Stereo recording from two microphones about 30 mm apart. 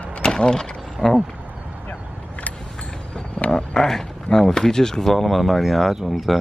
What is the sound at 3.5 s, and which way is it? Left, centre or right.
Speech, left.